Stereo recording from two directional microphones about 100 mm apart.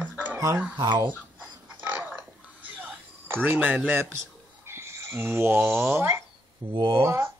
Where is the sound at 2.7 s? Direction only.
15° right (ahead or behind).